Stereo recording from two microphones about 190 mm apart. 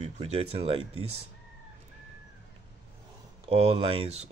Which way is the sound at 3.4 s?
30° right (ahead or behind).